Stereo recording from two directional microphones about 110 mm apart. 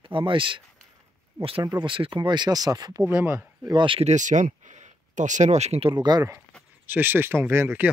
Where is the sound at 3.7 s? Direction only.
50° right (ahead or behind).